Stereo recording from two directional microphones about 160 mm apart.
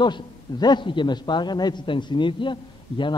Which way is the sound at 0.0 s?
25° left (ahead or behind).